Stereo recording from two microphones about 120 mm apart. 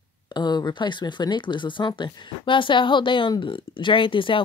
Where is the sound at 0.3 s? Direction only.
40° left (ahead or behind).